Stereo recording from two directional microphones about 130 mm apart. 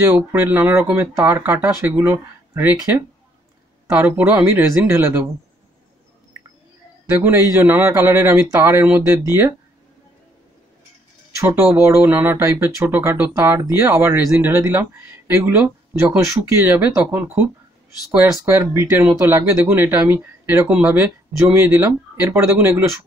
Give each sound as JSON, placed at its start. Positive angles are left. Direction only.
{"t": 0.0, "sound": "speech", "side_deg": -15}
{"t": 3.9, "sound": "speech", "side_deg": -15}
{"t": 7.1, "sound": "speech", "side_deg": -15}
{"t": 11.3, "sound": "speech", "side_deg": -20}